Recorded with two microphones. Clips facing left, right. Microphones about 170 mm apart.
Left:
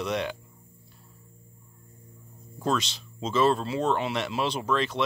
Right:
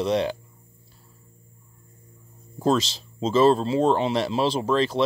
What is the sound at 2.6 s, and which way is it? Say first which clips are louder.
Speech: right 6 dB; 30° right (ahead or behind).